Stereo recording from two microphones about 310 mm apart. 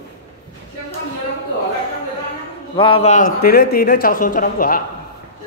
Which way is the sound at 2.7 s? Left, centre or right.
Centre.